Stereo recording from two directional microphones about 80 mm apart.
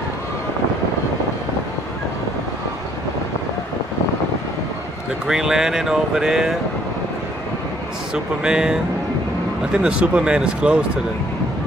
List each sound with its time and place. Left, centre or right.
5.2 s speech: centre
8.1 s speech: centre